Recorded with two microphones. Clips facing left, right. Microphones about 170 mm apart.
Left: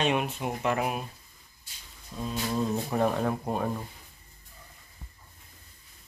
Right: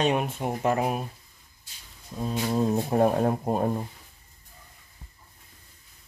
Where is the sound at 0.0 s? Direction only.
40° right (ahead or behind).